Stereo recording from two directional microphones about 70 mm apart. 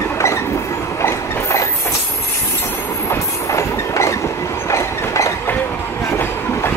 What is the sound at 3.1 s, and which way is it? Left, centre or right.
Train, left.